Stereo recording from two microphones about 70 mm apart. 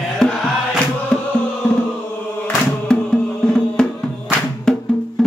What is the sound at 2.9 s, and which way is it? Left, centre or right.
Music, centre.